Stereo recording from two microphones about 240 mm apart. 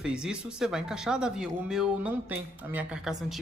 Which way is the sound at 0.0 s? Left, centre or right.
Centre.